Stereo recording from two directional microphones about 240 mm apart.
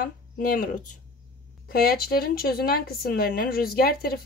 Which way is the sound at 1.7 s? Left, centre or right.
Left.